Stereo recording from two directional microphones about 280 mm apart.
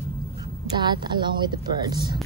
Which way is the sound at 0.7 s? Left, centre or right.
Centre.